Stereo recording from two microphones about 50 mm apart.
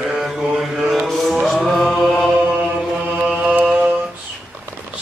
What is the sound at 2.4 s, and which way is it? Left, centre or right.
Chant, right.